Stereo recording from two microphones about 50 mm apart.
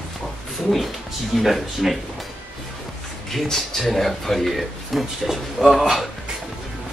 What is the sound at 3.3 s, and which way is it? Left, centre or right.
Speech, centre.